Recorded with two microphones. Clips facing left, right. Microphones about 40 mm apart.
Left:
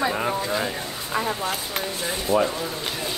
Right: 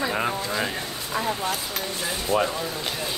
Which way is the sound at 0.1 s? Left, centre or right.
Centre.